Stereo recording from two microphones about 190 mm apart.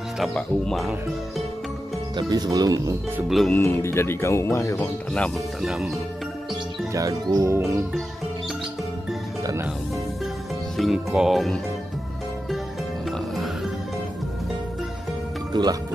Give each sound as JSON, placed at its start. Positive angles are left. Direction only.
{"t": 0.2, "sound": "speech", "side_deg": 0}
{"t": 2.1, "sound": "speech", "side_deg": -20}
{"t": 3.3, "sound": "speech", "side_deg": 0}
{"t": 3.5, "sound": "speech", "side_deg": 15}
{"t": 5.1, "sound": "speech", "side_deg": 0}
{"t": 6.9, "sound": "speech", "side_deg": -15}
{"t": 10.8, "sound": "speech", "side_deg": 0}
{"t": 15.5, "sound": "speech", "side_deg": -20}